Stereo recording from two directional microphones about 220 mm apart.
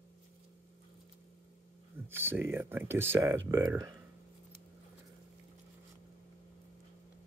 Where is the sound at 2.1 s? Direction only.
10° right (ahead or behind).